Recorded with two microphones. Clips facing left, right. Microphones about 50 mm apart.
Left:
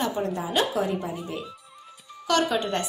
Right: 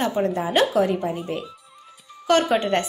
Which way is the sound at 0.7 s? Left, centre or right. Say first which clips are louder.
Right 6 dB; right.